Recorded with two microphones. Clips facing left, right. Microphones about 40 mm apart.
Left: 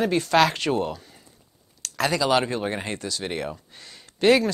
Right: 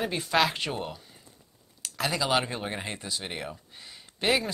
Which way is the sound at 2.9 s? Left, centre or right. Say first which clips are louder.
Left 4 dB; right.